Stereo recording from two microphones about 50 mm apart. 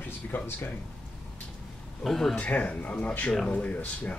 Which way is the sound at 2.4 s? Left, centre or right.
Left.